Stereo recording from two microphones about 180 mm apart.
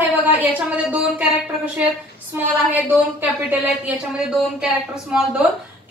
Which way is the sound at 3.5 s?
5° right (ahead or behind).